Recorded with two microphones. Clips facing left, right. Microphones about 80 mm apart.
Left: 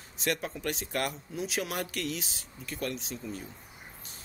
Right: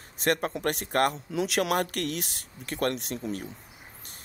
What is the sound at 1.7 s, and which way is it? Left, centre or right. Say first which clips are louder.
Speech: right 5 dB; right.